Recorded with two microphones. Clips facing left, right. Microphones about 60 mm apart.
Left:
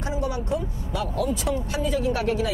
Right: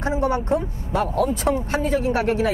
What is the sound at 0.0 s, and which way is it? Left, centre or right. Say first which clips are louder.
Speech: right 6 dB; right.